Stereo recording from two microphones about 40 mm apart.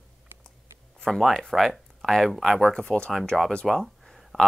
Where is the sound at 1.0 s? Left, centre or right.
Centre.